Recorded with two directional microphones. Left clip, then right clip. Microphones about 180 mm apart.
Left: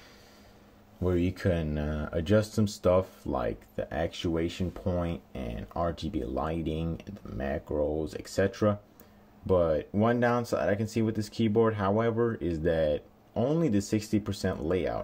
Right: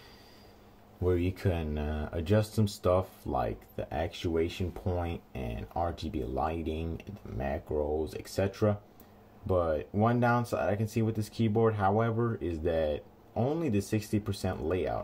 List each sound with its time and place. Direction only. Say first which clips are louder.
1.0 s speech: left 2 dB; 35° left (ahead or behind)